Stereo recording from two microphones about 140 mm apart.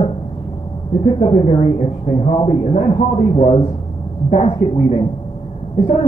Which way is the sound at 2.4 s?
50° left (ahead or behind).